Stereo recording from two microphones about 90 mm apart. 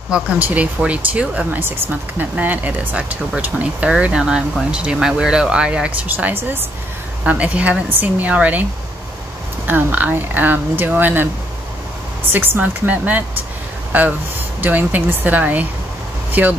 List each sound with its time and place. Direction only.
0.4 s speech: 15° right (ahead or behind)
9.7 s speech: 20° right (ahead or behind)
12.3 s speech: 20° right (ahead or behind)
14.6 s speech: 20° right (ahead or behind)